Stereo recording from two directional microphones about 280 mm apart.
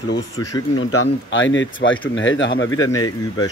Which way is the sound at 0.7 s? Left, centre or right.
Left.